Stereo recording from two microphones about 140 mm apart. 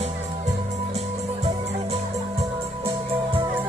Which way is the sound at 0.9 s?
50° right (ahead or behind).